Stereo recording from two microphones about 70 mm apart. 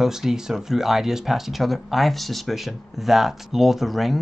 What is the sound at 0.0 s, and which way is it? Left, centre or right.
Speech, centre.